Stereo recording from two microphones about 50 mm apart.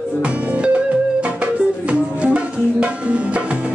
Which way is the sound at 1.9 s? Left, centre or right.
Right.